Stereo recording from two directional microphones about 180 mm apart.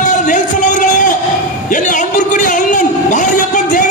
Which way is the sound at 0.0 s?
45° left (ahead or behind).